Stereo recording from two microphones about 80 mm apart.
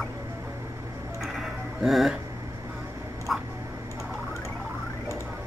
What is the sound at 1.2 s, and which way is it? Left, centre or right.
Music, centre.